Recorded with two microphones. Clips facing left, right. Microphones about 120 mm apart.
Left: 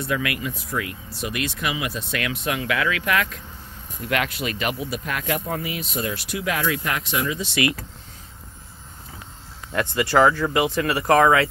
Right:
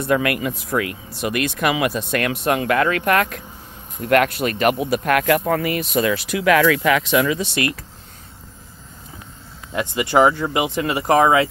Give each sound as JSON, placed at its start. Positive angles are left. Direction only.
{"t": 0.0, "sound": "speech", "side_deg": -50}
{"t": 9.7, "sound": "speech", "side_deg": -15}